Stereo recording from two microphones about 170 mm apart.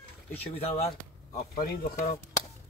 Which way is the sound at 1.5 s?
60° left (ahead or behind).